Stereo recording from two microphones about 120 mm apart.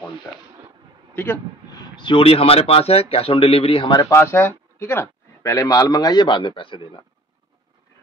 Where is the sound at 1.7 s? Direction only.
40° left (ahead or behind).